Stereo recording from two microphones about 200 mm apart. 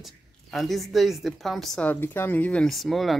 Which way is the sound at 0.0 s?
Centre (ahead or behind).